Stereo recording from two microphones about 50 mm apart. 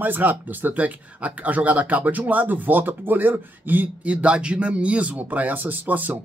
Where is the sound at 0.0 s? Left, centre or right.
Right.